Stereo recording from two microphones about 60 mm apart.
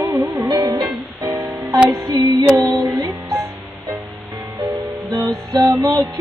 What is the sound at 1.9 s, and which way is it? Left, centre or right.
Female singing, right.